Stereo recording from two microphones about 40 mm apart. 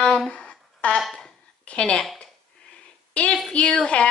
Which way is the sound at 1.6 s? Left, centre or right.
Left.